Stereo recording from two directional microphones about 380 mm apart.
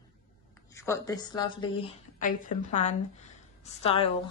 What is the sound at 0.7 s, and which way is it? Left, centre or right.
A woman's voice, centre.